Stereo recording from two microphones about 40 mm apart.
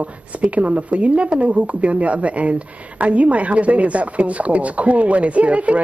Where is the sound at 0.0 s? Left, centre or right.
Right.